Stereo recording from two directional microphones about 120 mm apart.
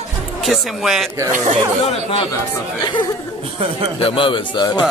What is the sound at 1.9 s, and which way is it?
Speech, 50° left (ahead or behind).